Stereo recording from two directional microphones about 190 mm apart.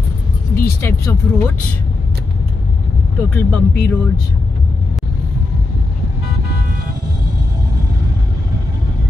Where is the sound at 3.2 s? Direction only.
10° left (ahead or behind).